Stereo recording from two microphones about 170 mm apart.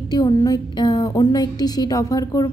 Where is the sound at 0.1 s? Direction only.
20° left (ahead or behind).